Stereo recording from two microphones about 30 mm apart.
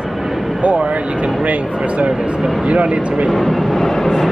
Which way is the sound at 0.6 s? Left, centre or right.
Right.